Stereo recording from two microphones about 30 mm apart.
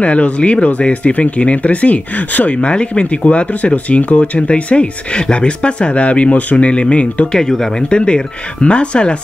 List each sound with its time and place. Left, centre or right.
0.0 s speech: left
2.6 s speech: left
7.3 s speech: centre
7.9 s speech: left